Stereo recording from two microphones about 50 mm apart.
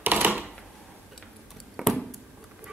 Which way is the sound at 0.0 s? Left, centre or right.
Right.